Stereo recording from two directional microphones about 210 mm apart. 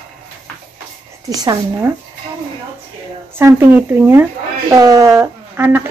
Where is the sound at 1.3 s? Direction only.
20° right (ahead or behind).